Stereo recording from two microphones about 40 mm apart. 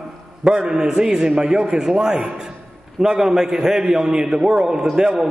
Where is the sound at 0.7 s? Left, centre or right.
Centre.